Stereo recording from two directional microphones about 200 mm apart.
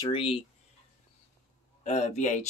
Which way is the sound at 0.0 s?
25° left (ahead or behind).